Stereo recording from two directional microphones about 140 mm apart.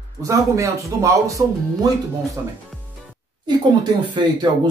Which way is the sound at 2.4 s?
20° right (ahead or behind).